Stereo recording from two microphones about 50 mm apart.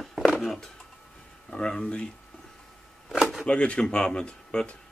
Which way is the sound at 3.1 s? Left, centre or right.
Centre.